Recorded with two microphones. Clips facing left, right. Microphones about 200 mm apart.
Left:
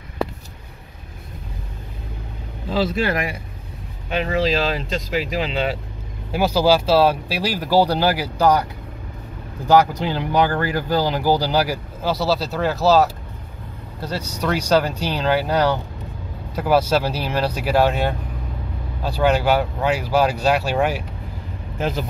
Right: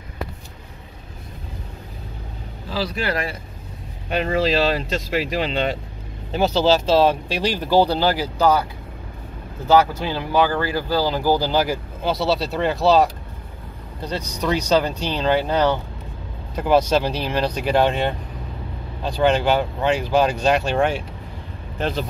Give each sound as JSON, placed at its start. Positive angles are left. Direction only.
{"t": 2.7, "sound": "speech", "side_deg": 25}
{"t": 4.7, "sound": "speech", "side_deg": 0}
{"t": 9.7, "sound": "speech", "side_deg": 15}
{"t": 14.1, "sound": "speech", "side_deg": 10}